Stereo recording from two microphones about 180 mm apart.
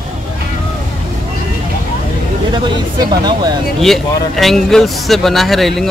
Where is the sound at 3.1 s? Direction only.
25° right (ahead or behind).